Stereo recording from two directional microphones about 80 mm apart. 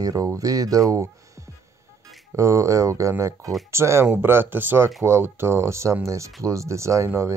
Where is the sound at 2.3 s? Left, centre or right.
Right.